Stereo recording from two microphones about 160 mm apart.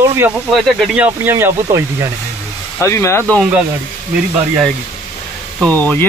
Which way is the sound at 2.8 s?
20° left (ahead or behind).